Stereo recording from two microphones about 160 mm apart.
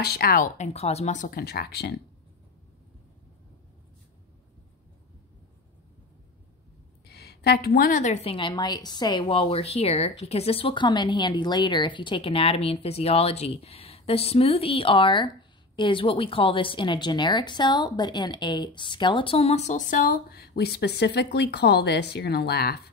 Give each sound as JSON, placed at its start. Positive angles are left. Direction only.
{"t": 0.0, "sound": "speech", "side_deg": 75}
{"t": 0.6, "sound": "speech", "side_deg": 40}
{"t": 1.3, "sound": "speech", "side_deg": 75}
{"t": 7.1, "sound": "a woman's voice", "side_deg": 90}